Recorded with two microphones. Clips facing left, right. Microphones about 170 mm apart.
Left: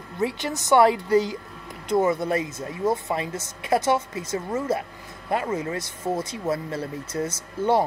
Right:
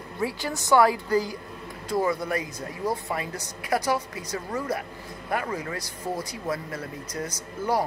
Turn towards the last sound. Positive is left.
turn(degrees=25)  # may be behind; listen again after turning